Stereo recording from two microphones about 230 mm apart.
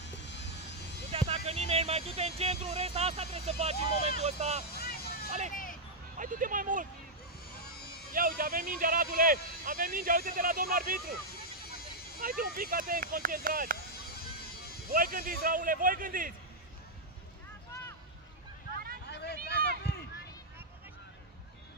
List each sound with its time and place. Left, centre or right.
0.2 s vehicle: left
1.1 s speech: right
4.7 s vehicle: left
5.5 s a sound: left
6.1 s speech: right
7.5 s a sound: left
8.1 s speech: right
12.2 s speech: right
14.9 s speech: right
19.0 s a sound: left